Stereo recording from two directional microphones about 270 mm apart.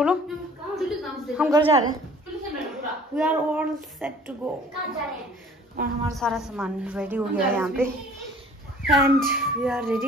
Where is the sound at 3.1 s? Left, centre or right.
Centre.